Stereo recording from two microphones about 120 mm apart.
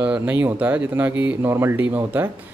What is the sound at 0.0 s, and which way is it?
Speech, 15° right (ahead or behind).